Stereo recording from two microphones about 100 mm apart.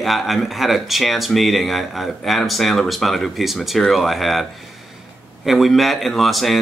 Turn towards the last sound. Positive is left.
turn(degrees=0)  # may be behind; listen again after turning